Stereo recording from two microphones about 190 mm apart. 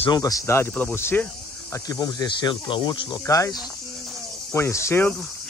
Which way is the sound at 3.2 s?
15° left (ahead or behind).